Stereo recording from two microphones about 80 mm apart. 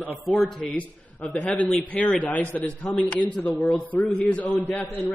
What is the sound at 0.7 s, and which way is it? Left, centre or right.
A man's voice, centre.